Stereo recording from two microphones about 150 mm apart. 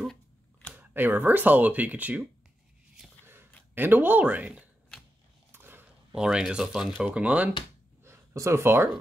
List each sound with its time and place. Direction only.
0.0 s typewriter: 5° left (ahead or behind)
0.7 s speech: 15° right (ahead or behind)
3.7 s speech: 15° right (ahead or behind)
5.5 s a sound: 15° right (ahead or behind)
7.0 s speech: 10° right (ahead or behind)
8.0 s a sound: 20° right (ahead or behind)